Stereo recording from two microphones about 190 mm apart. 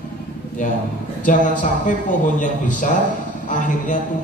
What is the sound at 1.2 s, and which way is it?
A man's voice, 40° left (ahead or behind).